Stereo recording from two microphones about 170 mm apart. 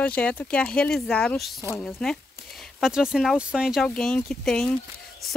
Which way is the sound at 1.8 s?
Centre (ahead or behind).